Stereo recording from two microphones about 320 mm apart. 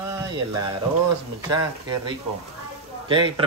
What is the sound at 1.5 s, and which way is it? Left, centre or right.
Speech, centre.